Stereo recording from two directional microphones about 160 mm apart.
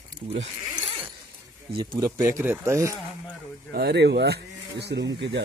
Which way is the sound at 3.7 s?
85° right.